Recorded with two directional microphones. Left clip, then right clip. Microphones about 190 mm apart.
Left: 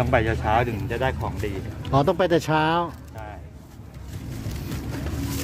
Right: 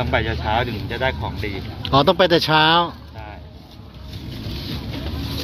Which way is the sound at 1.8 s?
10° left (ahead or behind).